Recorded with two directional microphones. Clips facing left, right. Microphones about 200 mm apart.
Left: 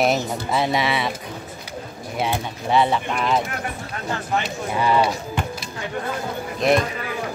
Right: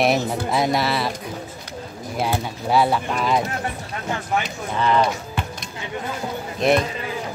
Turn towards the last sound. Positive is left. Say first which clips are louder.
# even
turn(degrees=0)  # may be behind; listen again after turning